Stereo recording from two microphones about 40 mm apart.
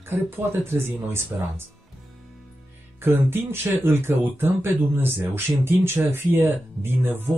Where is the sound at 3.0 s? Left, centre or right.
Right.